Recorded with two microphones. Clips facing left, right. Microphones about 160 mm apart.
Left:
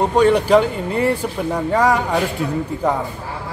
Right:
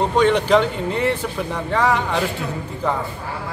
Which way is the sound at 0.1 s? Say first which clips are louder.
Left 3 dB; 5° left (ahead or behind).